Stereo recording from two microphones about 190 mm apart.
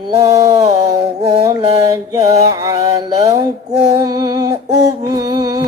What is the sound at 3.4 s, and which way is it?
Female singing, 20° right (ahead or behind).